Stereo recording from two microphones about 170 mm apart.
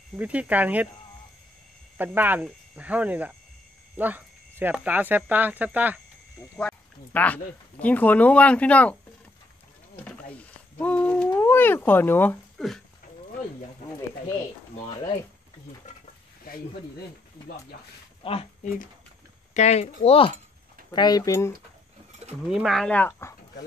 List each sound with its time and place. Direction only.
0.1 s speech: 10° right (ahead or behind)
2.0 s speech: 10° right (ahead or behind)
6.4 s sheep: 15° left (ahead or behind)
7.8 s speech: 10° left (ahead or behind)
10.0 s speech: 10° left (ahead or behind)
12.5 s speech: centre (ahead or behind)
18.2 s speech: 35° left (ahead or behind)
20.9 s speech: 25° left (ahead or behind)
22.5 s speech: centre (ahead or behind)